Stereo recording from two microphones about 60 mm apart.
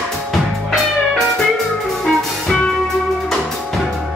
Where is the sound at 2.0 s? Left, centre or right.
Centre.